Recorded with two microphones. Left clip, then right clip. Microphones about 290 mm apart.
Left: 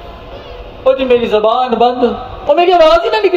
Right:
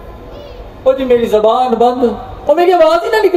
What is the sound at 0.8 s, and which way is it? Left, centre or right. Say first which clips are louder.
A man's voice: even; right.